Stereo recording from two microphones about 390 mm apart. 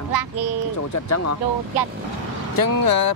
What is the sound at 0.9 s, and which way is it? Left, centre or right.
Speech, left.